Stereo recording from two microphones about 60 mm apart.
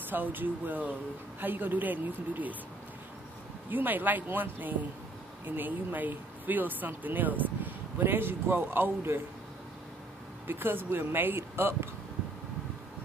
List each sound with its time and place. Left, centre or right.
0.1 s speech: right
3.7 s speech: right
10.4 s speech: right